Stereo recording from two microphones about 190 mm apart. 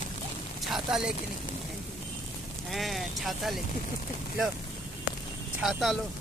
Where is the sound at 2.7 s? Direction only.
Centre (ahead or behind).